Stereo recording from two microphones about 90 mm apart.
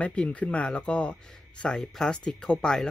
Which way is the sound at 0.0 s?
15° left (ahead or behind).